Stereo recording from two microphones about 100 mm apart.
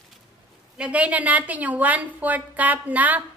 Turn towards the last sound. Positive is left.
turn(degrees=-15)  # may be behind; listen again after turning